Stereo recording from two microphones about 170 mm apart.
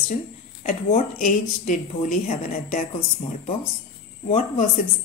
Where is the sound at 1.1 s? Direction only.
50° left (ahead or behind).